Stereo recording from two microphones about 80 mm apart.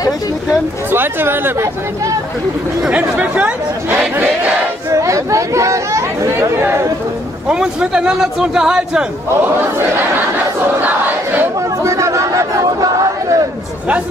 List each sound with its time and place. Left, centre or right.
0.9 s speech: right
2.9 s speech: centre
4.9 s chatter: right
6.6 s speech: right
7.4 s a man's voice: centre
9.6 s speech: right
10.8 s battle cry: right
11.8 s crowd: right